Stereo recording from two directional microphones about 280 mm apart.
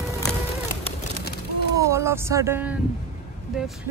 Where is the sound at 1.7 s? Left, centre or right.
Centre.